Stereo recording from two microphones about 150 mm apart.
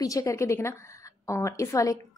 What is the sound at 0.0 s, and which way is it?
A woman's voice, 20° left (ahead or behind).